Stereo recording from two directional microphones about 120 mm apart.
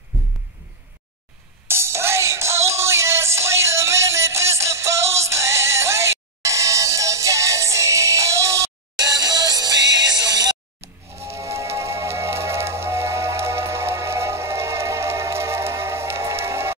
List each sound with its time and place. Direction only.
1.7 s music: 20° right (ahead or behind)
11.1 s music: 25° right (ahead or behind)